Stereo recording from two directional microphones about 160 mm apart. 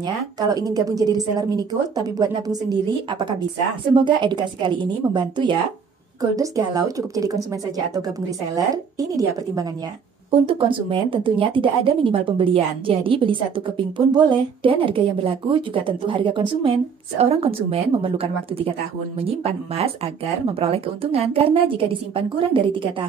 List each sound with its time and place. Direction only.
0.0 s a woman's voice: 25° right (ahead or behind)
10.4 s speech: 35° right (ahead or behind)